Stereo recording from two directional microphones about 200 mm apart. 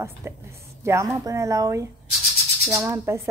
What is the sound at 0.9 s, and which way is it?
Speech, 15° right (ahead or behind).